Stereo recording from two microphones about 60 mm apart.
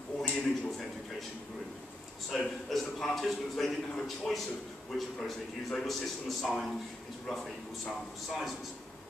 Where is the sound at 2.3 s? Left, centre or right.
Centre.